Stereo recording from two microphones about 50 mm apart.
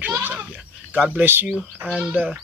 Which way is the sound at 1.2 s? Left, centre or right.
Right.